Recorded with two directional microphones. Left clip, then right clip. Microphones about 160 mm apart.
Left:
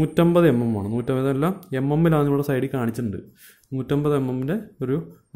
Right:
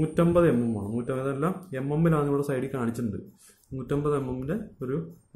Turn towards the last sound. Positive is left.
turn(degrees=55)  # may be behind; listen again after turning